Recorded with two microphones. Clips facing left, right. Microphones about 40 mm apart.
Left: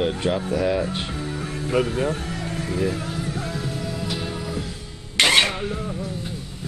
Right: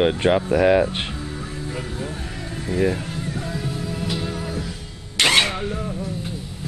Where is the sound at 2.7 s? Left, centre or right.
Right.